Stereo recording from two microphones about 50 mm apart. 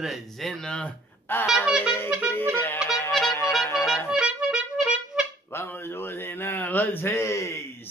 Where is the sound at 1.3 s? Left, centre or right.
Left.